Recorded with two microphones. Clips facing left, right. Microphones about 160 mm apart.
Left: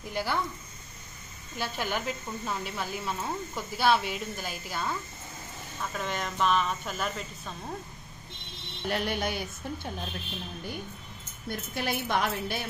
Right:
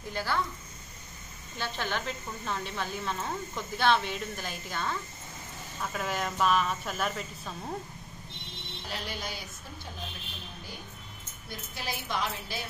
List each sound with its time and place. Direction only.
0.1 s speech: 15° left (ahead or behind)
1.6 s speech: 10° left (ahead or behind)
5.8 s speech: 5° right (ahead or behind)
8.8 s a woman's voice: 60° left (ahead or behind)
11.4 s a woman's voice: 60° left (ahead or behind)